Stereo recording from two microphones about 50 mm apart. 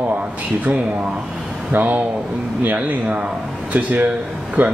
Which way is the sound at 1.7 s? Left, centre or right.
Right.